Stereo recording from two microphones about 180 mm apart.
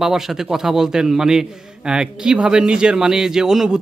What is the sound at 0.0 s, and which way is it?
A man's voice, centre (ahead or behind).